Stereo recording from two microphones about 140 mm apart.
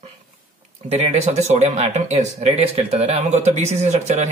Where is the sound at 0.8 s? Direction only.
45° right (ahead or behind).